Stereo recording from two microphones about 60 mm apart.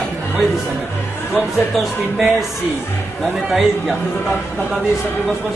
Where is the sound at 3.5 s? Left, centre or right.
Centre.